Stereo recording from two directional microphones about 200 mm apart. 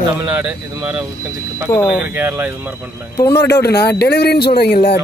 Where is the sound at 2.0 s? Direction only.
10° right (ahead or behind).